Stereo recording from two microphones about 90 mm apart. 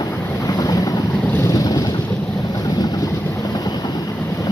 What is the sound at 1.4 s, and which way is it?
Boat, 40° left (ahead or behind).